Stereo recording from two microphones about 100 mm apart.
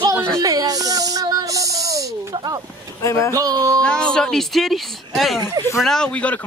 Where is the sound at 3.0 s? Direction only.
30° left (ahead or behind).